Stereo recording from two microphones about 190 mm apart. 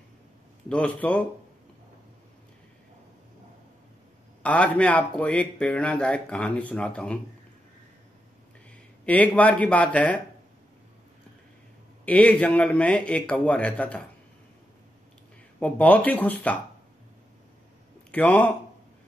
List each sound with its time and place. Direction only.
0.7 s speech: 5° left (ahead or behind)
4.4 s speech: 5° left (ahead or behind)
9.0 s speech: 10° left (ahead or behind)
12.0 s speech: 10° left (ahead or behind)
15.6 s speech: 5° left (ahead or behind)
18.1 s speech: 10° left (ahead or behind)